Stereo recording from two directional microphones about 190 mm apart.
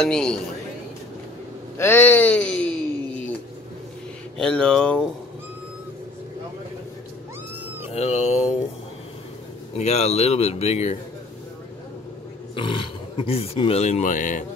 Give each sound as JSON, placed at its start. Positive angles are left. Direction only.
{"t": 0.0, "sound": "speech", "side_deg": 5}
{"t": 1.8, "sound": "speech", "side_deg": 10}
{"t": 4.4, "sound": "speech", "side_deg": 5}
{"t": 7.9, "sound": "speech", "side_deg": 35}
{"t": 9.8, "sound": "speech", "side_deg": 35}
{"t": 12.5, "sound": "speech", "side_deg": 25}